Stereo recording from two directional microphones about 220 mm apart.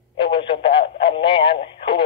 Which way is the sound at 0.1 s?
25° left (ahead or behind).